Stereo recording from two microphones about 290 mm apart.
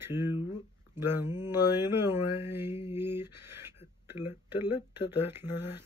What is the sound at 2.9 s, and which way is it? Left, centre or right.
Speech, centre.